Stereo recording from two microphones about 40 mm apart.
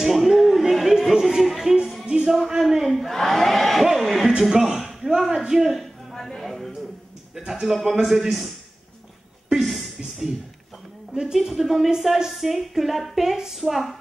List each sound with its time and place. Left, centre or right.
0.0 s music: centre
2.0 s speech: right
2.3 s a man's voice: centre
3.8 s music: centre
4.4 s a man's voice: centre
6.1 s a sound: centre
7.3 s a man's voice: centre
9.6 s a sound: centre
11.3 s speech: centre